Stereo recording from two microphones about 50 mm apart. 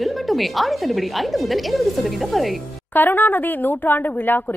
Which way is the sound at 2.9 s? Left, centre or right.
Left.